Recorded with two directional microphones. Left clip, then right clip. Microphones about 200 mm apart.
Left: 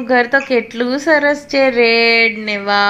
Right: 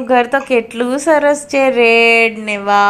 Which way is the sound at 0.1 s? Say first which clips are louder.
Right 1 dB; 15° right (ahead or behind).